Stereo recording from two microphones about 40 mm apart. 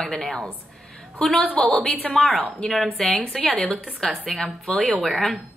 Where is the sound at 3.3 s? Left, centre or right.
Left.